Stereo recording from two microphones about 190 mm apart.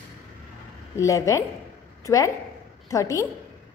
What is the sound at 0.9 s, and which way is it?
A woman's voice, 15° left (ahead or behind).